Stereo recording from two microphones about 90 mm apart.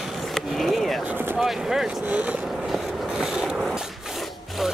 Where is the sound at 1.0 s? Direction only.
20° right (ahead or behind).